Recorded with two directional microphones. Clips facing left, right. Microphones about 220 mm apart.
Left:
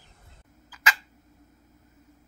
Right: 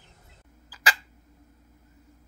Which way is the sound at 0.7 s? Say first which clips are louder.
Even; 35° right (ahead or behind).